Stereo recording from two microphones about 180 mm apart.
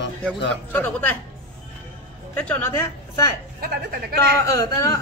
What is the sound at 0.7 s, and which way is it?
Speech, 10° left (ahead or behind).